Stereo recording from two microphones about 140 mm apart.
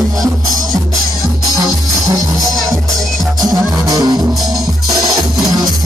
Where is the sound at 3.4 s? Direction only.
25° right (ahead or behind).